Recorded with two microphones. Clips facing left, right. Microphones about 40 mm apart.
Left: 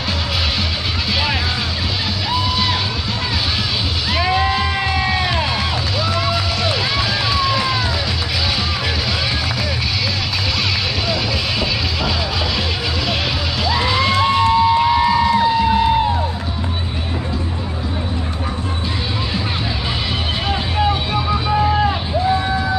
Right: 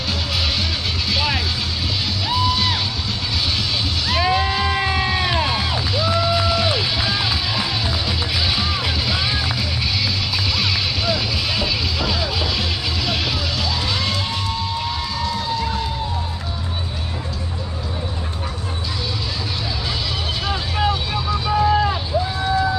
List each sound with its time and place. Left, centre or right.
2.3 s music: centre
4.1 s music: centre
6.0 s music: centre
13.7 s music: centre; by 16.1 s left
20.4 s vehicle: centre